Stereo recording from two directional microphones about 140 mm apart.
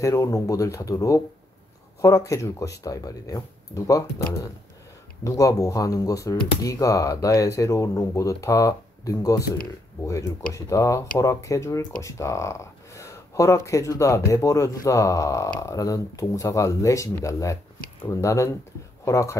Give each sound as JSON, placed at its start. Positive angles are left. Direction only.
{"t": 0.0, "sound": "speech", "side_deg": 25}